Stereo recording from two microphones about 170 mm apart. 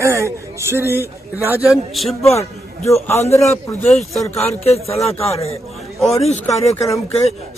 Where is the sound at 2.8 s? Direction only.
15° left (ahead or behind).